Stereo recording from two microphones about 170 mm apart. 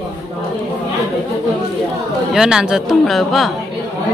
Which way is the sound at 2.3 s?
5° right (ahead or behind).